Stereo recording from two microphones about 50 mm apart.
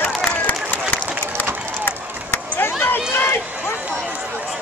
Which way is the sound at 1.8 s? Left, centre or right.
Left.